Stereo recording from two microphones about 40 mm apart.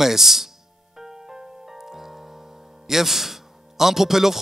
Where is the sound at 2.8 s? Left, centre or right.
Centre.